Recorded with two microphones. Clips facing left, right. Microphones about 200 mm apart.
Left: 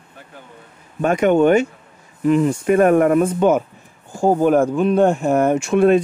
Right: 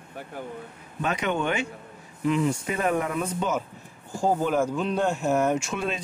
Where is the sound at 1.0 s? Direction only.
50° left (ahead or behind).